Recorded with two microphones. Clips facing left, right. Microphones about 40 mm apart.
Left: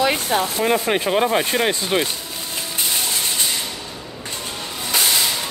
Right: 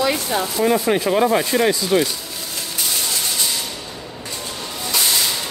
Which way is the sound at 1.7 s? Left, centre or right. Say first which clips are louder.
Right 3 dB; left.